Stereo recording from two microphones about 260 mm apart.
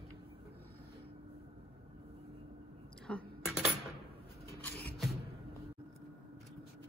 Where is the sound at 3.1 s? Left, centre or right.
Centre.